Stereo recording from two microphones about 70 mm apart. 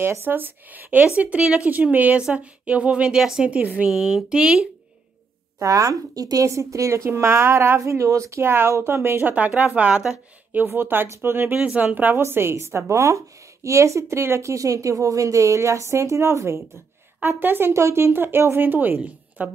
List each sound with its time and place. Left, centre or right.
0.0 s a woman's voice: right; by 3.4 s centre
3.4 s speech: centre
3.9 s a woman's voice: centre
5.6 s speech: right
9.6 s speech: centre
10.5 s a woman's voice: right
17.4 s a woman's voice: right